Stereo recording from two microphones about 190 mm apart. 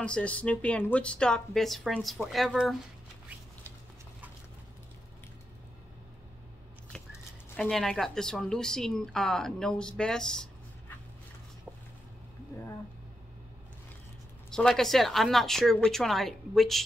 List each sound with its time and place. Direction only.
0.0 s a woman's voice: 5° left (ahead or behind)
7.4 s a woman's voice: 5° left (ahead or behind)
14.5 s a woman's voice: 5° left (ahead or behind)